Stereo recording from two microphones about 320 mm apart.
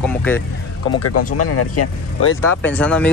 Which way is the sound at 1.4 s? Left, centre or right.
Left.